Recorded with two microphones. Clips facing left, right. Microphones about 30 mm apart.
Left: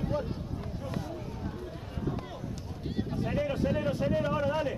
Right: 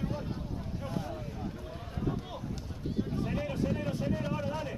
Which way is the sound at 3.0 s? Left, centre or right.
Centre.